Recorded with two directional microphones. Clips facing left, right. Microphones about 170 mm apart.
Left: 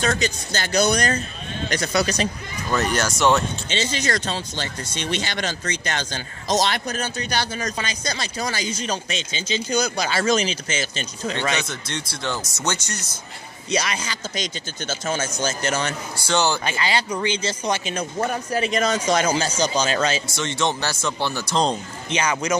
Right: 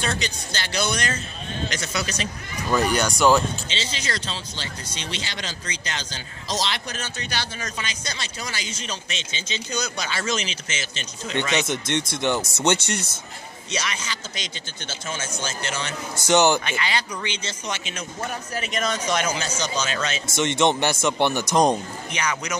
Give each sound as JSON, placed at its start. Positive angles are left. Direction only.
{"t": 0.0, "sound": "a man's voice", "side_deg": 45}
{"t": 2.7, "sound": "speech", "side_deg": 0}
{"t": 3.7, "sound": "speech", "side_deg": 45}
{"t": 11.5, "sound": "speech", "side_deg": -20}
{"t": 13.7, "sound": "a man's voice", "side_deg": 35}
{"t": 16.3, "sound": "speech", "side_deg": -20}
{"t": 16.6, "sound": "speech", "side_deg": 35}
{"t": 20.3, "sound": "speech", "side_deg": -20}
{"t": 22.1, "sound": "speech", "side_deg": 30}